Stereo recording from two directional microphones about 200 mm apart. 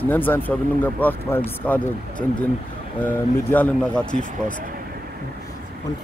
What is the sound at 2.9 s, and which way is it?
Speech, 10° left (ahead or behind).